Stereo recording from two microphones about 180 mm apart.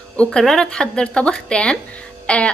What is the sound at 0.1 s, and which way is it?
A woman's voice, 5° left (ahead or behind).